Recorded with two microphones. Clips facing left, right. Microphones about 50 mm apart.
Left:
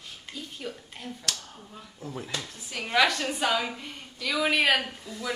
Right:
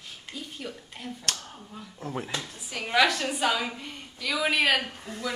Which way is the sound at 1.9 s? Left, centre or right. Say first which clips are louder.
Right 4 dB; right.